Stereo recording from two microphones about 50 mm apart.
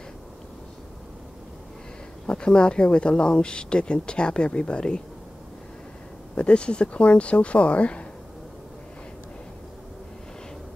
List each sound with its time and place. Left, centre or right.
2.2 s speech: centre
6.3 s speech: left